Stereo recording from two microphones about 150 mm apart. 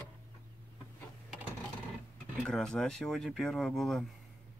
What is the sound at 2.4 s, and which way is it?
Speech, 5° left (ahead or behind).